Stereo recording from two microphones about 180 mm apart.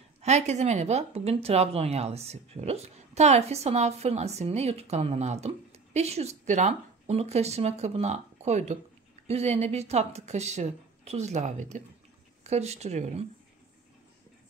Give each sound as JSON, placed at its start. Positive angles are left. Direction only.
{"t": 0.2, "sound": "speech", "side_deg": -40}